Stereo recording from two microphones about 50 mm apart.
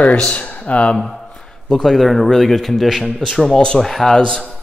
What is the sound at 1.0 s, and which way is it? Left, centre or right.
Speech, centre.